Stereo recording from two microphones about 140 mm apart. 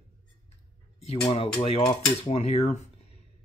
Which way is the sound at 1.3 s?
45° left (ahead or behind).